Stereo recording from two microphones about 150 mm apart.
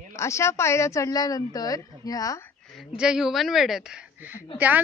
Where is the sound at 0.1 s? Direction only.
20° left (ahead or behind).